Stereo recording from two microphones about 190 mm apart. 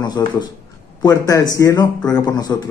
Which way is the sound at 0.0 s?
20° left (ahead or behind).